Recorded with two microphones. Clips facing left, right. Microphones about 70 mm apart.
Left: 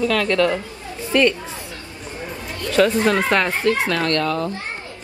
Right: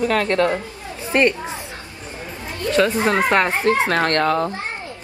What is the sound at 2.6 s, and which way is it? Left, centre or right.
Chatter, right.